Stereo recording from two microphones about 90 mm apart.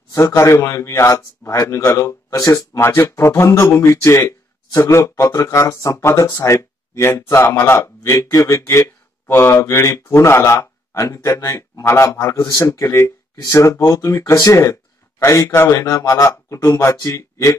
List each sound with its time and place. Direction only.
0.4 s speech: 30° left (ahead or behind)